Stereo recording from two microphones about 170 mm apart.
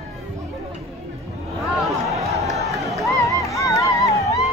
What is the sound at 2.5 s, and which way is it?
Crowd, 20° left (ahead or behind).